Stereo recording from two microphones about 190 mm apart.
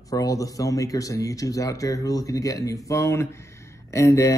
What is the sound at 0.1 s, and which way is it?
Speech, 20° left (ahead or behind).